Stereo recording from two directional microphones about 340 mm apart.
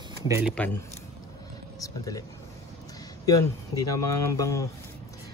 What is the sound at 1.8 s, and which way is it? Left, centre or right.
Speech, centre.